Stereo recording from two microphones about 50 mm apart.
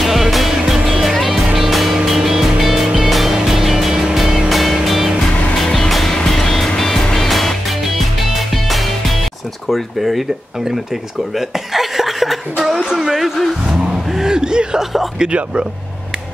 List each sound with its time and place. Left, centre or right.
0.0 s music: centre
9.7 s speech: centre
11.3 s chuckle: centre
12.7 s speech: centre
13.7 s vehicle: centre
15.1 s speech: centre